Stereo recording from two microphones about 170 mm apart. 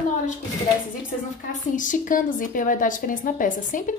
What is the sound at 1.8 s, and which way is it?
A woman's voice, 50° left (ahead or behind).